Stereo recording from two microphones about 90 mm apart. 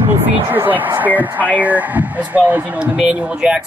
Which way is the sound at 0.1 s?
20° right (ahead or behind).